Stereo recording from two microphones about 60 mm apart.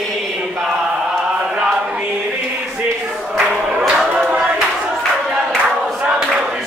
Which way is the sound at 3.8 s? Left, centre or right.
Centre.